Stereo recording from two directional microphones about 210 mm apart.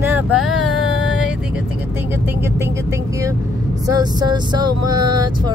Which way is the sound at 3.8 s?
20° right (ahead or behind).